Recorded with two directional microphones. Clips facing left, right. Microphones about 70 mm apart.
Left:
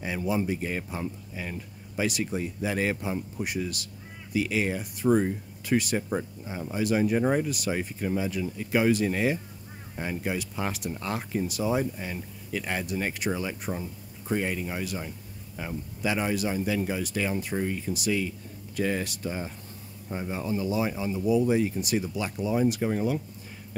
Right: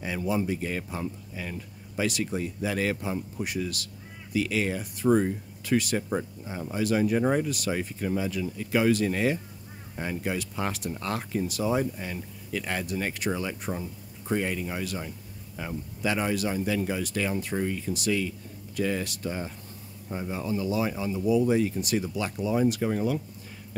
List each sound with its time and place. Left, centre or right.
0.0 s speech: centre